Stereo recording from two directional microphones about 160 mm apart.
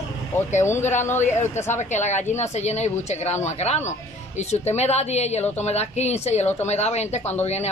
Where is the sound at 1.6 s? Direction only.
45° left (ahead or behind).